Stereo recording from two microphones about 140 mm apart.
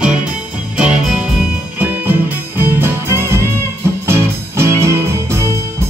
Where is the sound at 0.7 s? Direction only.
5° right (ahead or behind).